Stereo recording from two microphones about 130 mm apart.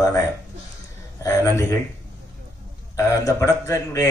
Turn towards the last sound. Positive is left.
turn(degrees=25)  # may be behind; listen again after turning